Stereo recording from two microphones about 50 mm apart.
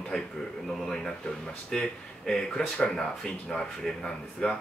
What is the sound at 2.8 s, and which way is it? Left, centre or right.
Speech, centre.